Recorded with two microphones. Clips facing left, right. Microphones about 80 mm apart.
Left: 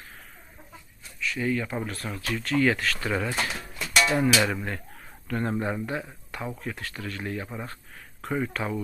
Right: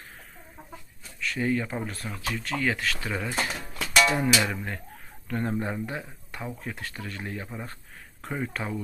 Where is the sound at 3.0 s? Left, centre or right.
Centre.